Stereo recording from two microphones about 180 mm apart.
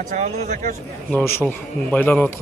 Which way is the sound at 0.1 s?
40° right (ahead or behind).